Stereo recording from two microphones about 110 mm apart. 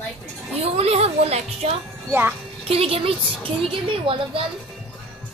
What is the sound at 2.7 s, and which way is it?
A woman's voice, 60° right (ahead or behind).